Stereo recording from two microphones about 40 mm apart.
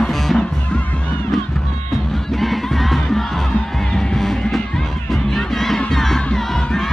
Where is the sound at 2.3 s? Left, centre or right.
Centre.